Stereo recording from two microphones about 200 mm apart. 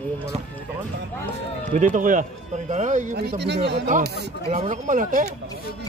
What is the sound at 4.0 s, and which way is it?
Speech, 55° right (ahead or behind).